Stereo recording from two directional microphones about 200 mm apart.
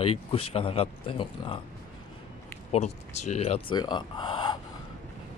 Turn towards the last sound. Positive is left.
turn(degrees=20)  # may be behind; listen again after turning